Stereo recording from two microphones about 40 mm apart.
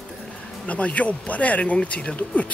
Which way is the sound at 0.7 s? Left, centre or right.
Left.